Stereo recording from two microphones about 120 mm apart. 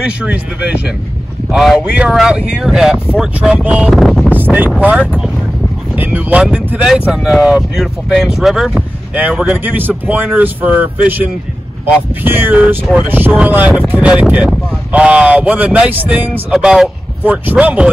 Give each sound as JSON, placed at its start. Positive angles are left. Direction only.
{"t": 0.0, "sound": "speech", "side_deg": -10}
{"t": 1.5, "sound": "speech", "side_deg": -5}
{"t": 4.4, "sound": "speech", "side_deg": -15}
{"t": 5.9, "sound": "speech", "side_deg": -15}